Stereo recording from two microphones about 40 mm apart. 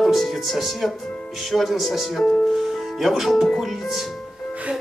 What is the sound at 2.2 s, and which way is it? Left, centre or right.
Speech, centre.